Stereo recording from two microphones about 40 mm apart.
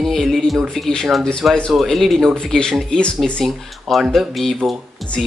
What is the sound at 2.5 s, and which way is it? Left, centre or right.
Speech, centre.